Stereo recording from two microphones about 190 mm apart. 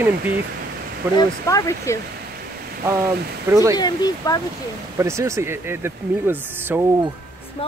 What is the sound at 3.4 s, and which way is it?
Speech, 15° right (ahead or behind).